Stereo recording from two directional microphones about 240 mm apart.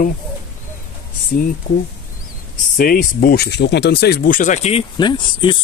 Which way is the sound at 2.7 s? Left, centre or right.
Left.